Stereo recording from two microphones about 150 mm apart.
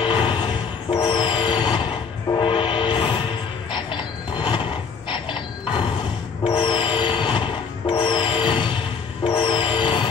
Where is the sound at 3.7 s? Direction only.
30° left (ahead or behind).